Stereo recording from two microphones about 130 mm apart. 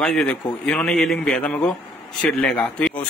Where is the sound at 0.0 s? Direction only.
5° left (ahead or behind).